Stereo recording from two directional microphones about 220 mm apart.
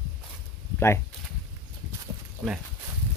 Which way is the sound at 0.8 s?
10° left (ahead or behind).